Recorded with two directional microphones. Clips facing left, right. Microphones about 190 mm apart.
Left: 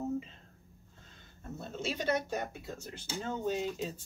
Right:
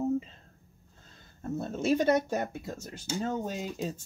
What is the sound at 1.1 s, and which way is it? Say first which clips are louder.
Speech: right 10 dB; 45° right (ahead or behind).